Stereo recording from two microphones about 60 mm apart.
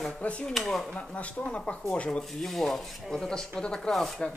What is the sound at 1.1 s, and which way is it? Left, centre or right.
Speech, left.